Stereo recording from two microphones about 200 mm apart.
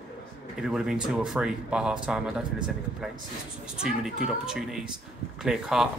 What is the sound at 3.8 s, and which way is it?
Speech, 5° right (ahead or behind).